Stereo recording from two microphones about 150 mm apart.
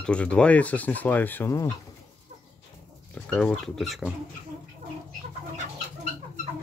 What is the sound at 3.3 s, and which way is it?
Speech, 5° left (ahead or behind).